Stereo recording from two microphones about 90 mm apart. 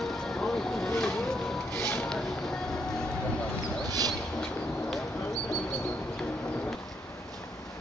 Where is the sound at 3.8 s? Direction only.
45° right (ahead or behind).